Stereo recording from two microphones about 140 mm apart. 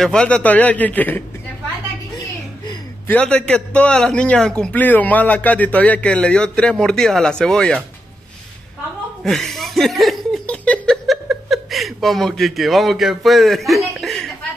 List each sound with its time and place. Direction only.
0.0 s a man's voice: 5° left (ahead or behind)
2.1 s a sound: 30° left (ahead or behind)
3.1 s a man's voice: 10° left (ahead or behind)
9.2 s speech: centre (ahead or behind)